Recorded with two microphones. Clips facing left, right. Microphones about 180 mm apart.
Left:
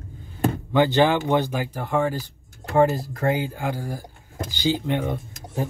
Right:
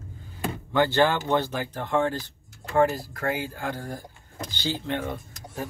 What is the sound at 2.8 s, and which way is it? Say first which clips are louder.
Speech: left 3 dB; 20° left (ahead or behind).